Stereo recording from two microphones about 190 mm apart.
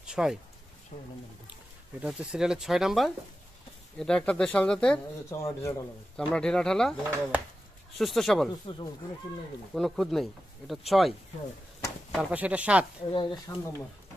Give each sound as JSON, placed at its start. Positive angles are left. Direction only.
{"t": 0.0, "sound": "a sound", "side_deg": -5}
{"t": 0.9, "sound": "speech", "side_deg": 35}
{"t": 1.5, "sound": "speech", "side_deg": -5}
{"t": 6.1, "sound": "speech", "side_deg": 5}
{"t": 8.0, "sound": "speech", "side_deg": 0}
{"t": 8.7, "sound": "speech", "side_deg": 25}
{"t": 9.8, "sound": "speech", "side_deg": 0}
{"t": 13.1, "sound": "speech", "side_deg": 25}